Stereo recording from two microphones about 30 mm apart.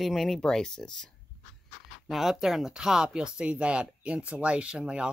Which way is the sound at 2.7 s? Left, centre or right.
Right.